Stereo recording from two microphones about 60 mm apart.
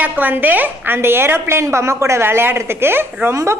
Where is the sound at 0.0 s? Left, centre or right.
Right.